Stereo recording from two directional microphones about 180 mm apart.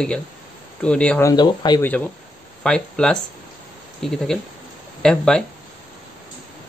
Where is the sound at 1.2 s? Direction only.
20° left (ahead or behind).